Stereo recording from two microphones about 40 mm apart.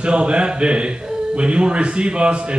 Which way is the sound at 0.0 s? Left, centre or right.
Right.